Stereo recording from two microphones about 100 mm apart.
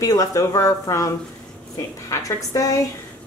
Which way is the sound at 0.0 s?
35° left (ahead or behind).